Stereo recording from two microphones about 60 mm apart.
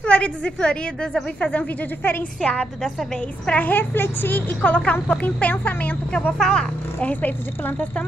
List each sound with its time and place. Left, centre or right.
0.0 s a woman's voice: centre
2.5 s a woman's voice: centre
3.4 s a woman's voice: left
6.3 s speech: centre
7.0 s a woman's voice: left